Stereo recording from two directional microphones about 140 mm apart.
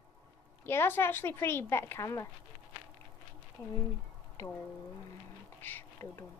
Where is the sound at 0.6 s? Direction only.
15° left (ahead or behind).